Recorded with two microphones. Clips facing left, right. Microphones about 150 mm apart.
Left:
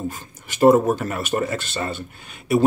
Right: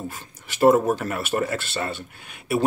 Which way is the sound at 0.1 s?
Centre (ahead or behind).